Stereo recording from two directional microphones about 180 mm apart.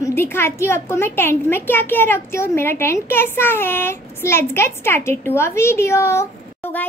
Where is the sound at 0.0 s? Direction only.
15° left (ahead or behind).